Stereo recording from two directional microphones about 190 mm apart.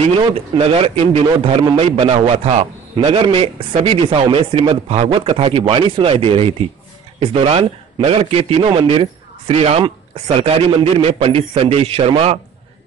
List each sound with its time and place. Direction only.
0.2 s a man's voice: 30° right (ahead or behind)